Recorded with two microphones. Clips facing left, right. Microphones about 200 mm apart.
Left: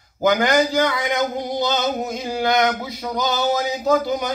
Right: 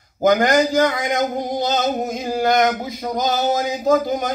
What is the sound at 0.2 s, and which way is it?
Male singing, 45° right (ahead or behind).